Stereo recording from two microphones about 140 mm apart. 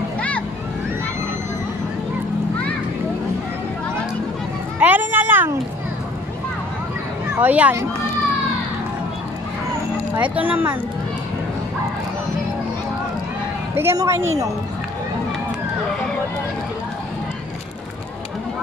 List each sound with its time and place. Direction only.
4.7 s a sound: 10° right (ahead or behind)
7.3 s speech: 10° right (ahead or behind)
10.1 s speech: 10° right (ahead or behind)
13.7 s a woman's voice: 20° right (ahead or behind)